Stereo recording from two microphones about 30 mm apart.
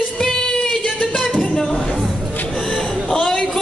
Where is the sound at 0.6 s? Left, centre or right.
Left.